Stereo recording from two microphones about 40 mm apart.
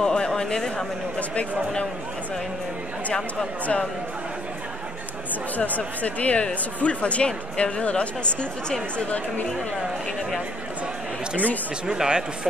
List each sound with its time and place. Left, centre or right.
0.0 s speech: centre
3.3 s speech: left
5.6 s speech: left
11.8 s speech: right